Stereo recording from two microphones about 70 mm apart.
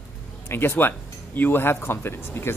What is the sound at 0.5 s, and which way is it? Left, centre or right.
Speech, left.